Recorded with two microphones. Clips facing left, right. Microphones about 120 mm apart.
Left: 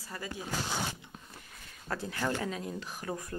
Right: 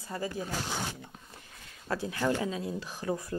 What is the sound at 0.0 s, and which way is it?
Speech, 25° right (ahead or behind).